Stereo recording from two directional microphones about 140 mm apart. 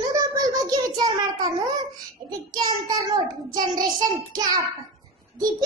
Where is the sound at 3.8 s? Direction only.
30° right (ahead or behind).